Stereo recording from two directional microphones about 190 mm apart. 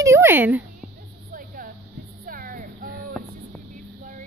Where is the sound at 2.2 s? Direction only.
50° right (ahead or behind).